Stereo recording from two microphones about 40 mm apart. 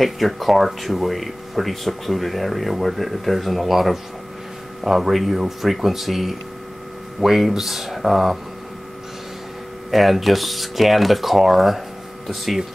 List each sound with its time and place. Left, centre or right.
0.0 s speech: centre
9.8 s speech: centre